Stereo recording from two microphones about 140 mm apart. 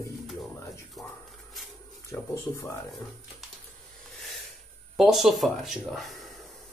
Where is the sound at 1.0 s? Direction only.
Centre (ahead or behind).